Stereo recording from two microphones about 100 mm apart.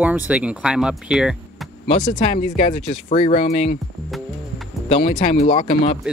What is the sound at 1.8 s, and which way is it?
Speech, 90° left.